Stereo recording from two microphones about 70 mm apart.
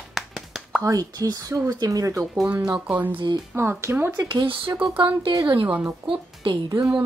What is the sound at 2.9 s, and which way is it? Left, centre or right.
Speech, right.